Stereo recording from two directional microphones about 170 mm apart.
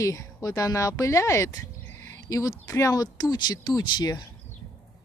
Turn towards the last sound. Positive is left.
turn(degrees=25)  # may be behind; listen again after turning